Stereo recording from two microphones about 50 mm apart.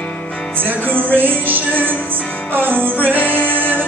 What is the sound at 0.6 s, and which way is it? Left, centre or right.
Music, right.